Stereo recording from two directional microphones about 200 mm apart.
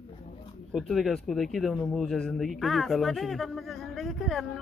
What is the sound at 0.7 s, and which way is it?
Speech, centre (ahead or behind).